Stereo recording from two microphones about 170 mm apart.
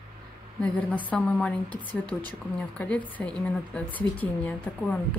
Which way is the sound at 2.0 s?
25° right (ahead or behind).